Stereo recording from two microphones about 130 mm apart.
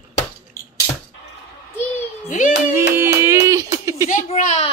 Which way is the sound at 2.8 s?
20° right (ahead or behind).